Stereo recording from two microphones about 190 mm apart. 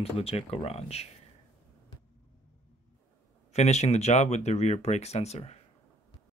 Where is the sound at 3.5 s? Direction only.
35° left (ahead or behind).